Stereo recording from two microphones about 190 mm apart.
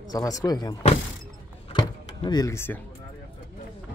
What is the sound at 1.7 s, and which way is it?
Door, 25° left (ahead or behind).